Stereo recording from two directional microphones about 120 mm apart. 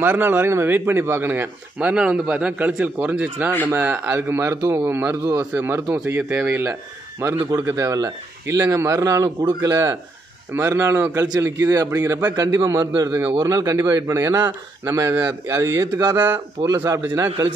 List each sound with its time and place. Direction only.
0.0 s a man's voice: 20° right (ahead or behind)
12.4 s a man's voice: 30° right (ahead or behind)
16.6 s a man's voice: 25° right (ahead or behind)